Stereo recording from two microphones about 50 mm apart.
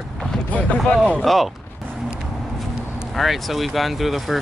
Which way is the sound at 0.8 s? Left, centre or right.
Centre.